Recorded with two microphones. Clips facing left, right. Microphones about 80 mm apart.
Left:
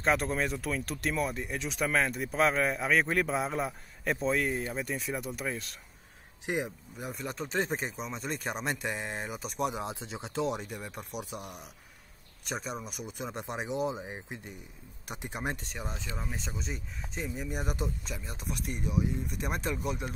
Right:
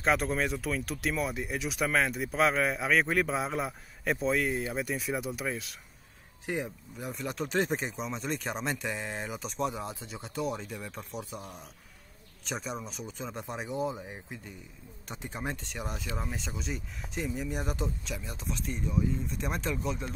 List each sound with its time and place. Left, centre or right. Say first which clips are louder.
0.0 s speech: right 1 dB; centre
6.4 s speech: left 1 dB; centre
7.0 s speech: right 2 dB; centre
9.6 s speech: left 1 dB; centre
12.4 s speech: even; centre
13.0 s speech: left 1 dB; centre
15.7 s speech: right 2 dB; centre
18.4 s speech: even; left
19.4 s speech: left 1 dB; centre